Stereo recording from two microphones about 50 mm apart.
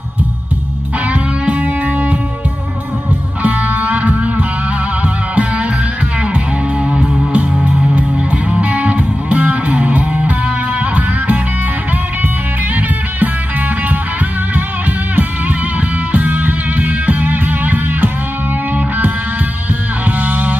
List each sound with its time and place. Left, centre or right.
1.1 s music: right
3.4 s music: right
6.9 s music: right
16.1 s music: right
20.1 s music: right